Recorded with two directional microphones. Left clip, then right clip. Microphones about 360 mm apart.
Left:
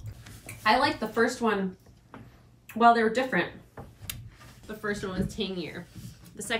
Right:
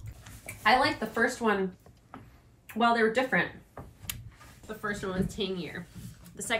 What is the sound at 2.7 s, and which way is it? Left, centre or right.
Speech, right.